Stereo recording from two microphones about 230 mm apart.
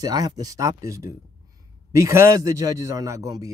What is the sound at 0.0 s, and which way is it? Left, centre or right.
Speech, centre.